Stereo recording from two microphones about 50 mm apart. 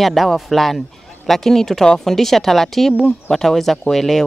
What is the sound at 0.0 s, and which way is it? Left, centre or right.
Speech, centre.